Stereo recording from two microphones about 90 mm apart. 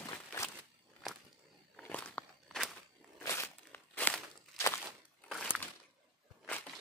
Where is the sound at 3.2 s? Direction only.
30° left (ahead or behind).